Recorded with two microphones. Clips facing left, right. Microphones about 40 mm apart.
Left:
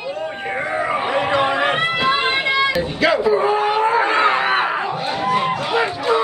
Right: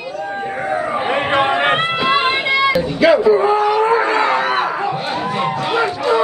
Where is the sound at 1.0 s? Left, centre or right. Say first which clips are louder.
Right 3 dB; right.